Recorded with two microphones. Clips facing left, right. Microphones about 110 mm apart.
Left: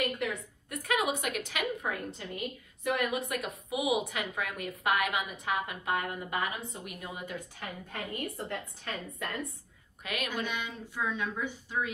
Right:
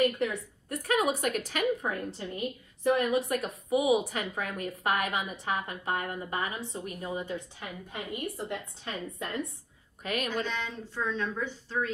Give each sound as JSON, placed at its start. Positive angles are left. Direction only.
{"t": 0.0, "sound": "a woman's voice", "side_deg": -35}
{"t": 7.9, "sound": "a woman's voice", "side_deg": -10}
{"t": 8.8, "sound": "a woman's voice", "side_deg": -25}
{"t": 10.0, "sound": "a woman's voice", "side_deg": -40}
{"t": 10.3, "sound": "a woman's voice", "side_deg": 15}